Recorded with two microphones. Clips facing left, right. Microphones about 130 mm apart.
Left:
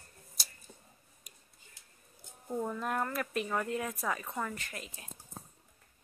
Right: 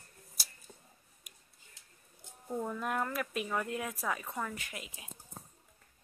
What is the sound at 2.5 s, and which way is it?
Speech, centre (ahead or behind).